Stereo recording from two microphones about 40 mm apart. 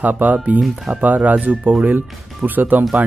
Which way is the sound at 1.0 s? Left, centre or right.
Right.